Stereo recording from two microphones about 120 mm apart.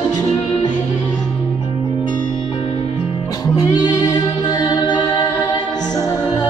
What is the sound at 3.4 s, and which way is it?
Music, 35° left (ahead or behind).